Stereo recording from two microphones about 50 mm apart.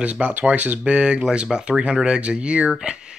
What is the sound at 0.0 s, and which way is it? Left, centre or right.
Speech, right.